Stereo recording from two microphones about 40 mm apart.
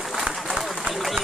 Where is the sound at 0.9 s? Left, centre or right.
Right.